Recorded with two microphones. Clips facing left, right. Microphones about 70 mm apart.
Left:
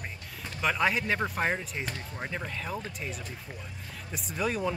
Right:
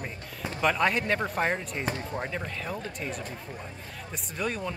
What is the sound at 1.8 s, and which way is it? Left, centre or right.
Speech, right.